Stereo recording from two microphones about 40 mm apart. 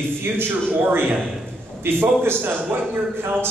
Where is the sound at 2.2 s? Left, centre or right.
Right.